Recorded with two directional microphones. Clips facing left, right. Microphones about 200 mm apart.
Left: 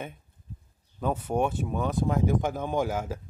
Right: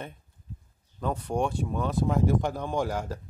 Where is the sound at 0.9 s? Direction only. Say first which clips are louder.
Left 2 dB; 5° left (ahead or behind).